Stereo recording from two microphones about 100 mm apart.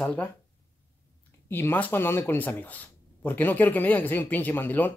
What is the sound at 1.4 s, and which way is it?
Speech, 20° left (ahead or behind).